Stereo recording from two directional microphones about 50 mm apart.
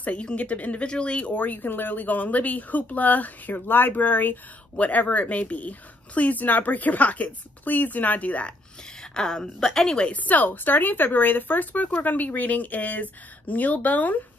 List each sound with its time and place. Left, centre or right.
0.0 s speech: left
9.1 s a woman's voice: centre
10.1 s speech: left